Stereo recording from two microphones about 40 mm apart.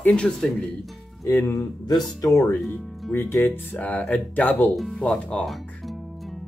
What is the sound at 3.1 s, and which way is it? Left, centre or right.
Speech, left.